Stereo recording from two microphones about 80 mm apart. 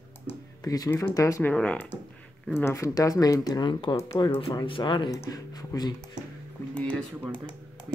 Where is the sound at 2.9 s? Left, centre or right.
Left.